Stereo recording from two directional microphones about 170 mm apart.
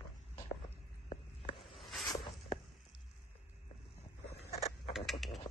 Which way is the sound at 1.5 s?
Centre (ahead or behind).